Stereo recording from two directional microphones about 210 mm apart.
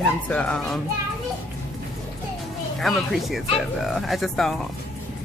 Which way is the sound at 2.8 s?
Centre (ahead or behind).